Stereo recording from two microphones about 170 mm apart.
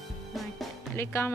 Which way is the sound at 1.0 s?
15° left (ahead or behind).